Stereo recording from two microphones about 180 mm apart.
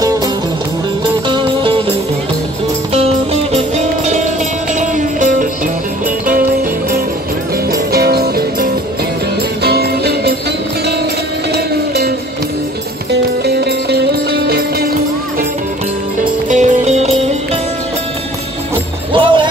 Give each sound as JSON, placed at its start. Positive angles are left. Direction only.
{"t": 1.3, "sound": "music", "side_deg": -30}
{"t": 3.5, "sound": "music", "side_deg": -40}
{"t": 7.7, "sound": "music", "side_deg": -60}
{"t": 11.5, "sound": "music", "side_deg": -65}
{"t": 13.1, "sound": "music", "side_deg": -65}
{"t": 16.4, "sound": "music", "side_deg": -40}
{"t": 19.1, "sound": "music", "side_deg": -25}